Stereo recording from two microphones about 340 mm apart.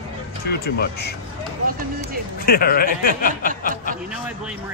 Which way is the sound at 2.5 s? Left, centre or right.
Left.